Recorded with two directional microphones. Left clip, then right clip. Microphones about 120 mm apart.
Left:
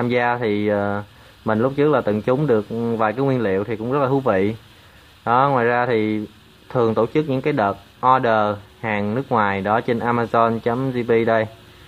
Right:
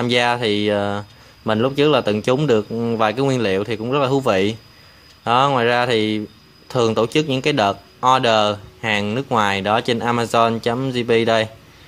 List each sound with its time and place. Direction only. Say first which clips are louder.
0.0 s speech: right 2 dB; 20° right (ahead or behind)